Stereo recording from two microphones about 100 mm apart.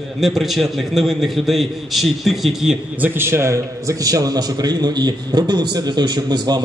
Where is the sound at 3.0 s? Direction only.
25° right (ahead or behind).